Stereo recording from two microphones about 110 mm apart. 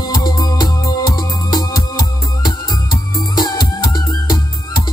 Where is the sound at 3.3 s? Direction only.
35° left (ahead or behind).